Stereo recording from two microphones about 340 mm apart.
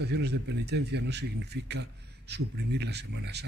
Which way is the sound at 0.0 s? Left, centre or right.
Right.